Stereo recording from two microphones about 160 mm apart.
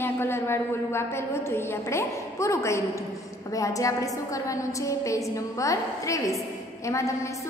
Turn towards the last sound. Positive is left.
turn(degrees=20)  # may be behind; listen again after turning